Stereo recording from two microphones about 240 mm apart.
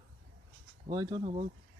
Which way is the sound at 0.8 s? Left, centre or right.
Centre.